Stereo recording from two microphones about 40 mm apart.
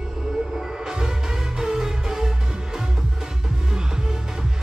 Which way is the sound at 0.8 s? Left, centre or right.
Centre.